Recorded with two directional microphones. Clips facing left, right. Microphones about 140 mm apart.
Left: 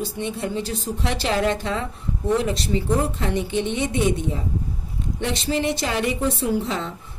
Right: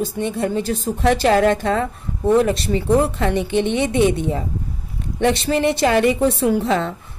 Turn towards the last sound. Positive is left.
turn(degrees=-65)  # may be behind; listen again after turning